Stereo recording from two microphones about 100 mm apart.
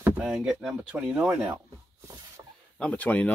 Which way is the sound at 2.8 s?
15° left (ahead or behind).